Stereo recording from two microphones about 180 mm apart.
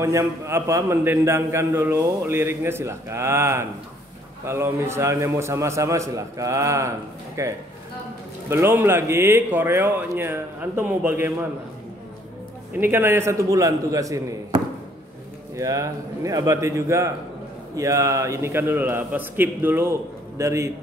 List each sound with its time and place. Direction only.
0.0 s a man's voice: 15° right (ahead or behind)
12.7 s a man's voice: 10° right (ahead or behind)